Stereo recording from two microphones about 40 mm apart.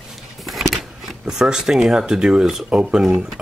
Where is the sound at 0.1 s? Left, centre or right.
Centre.